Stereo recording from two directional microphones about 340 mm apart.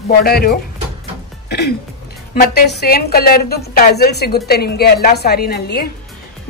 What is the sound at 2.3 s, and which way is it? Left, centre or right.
A woman's voice, left.